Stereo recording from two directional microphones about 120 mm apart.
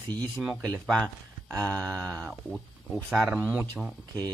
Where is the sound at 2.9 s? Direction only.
Centre (ahead or behind).